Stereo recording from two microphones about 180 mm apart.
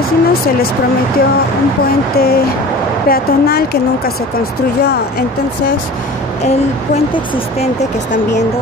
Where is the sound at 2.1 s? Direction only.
60° left (ahead or behind).